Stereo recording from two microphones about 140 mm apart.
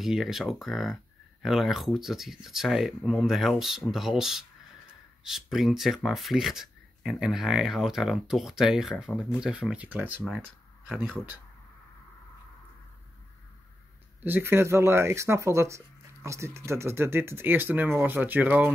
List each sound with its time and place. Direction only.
0.0 s speech: centre (ahead or behind)
14.2 s speech: 15° right (ahead or behind)